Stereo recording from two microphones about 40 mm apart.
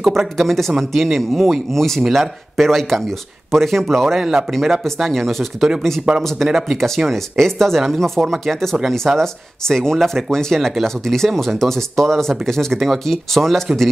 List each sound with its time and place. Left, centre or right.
0.0 s speech: centre
4.2 s speech: centre
4.5 s speech: centre
6.1 s speech: right
6.4 s speech: centre
7.1 s speech: centre